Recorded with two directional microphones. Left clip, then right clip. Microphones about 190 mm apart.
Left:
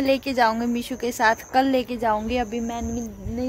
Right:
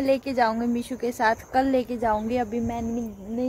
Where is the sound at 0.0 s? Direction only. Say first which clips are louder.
Left 2 dB; 15° left (ahead or behind).